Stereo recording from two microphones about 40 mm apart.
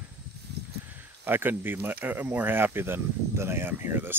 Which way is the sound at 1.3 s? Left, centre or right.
Right.